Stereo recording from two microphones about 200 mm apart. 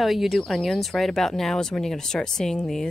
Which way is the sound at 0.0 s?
Centre (ahead or behind).